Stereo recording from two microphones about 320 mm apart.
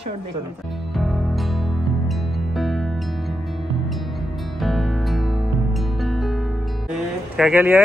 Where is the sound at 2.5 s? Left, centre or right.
Centre.